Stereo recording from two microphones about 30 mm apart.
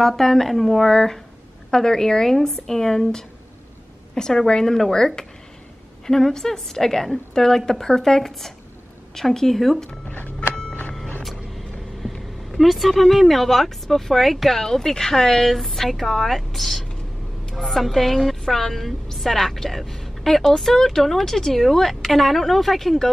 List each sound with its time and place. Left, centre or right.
0.0 s a woman's voice: centre
0.8 s a woman's voice: centre
6.3 s speech: centre
9.5 s a woman's voice: centre
10.5 s vehicle: left
11.2 s vehicle: centre
14.6 s a woman's voice: centre